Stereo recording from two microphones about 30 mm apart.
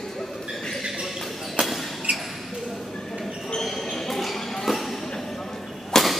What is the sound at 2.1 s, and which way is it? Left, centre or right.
Shuffle, right.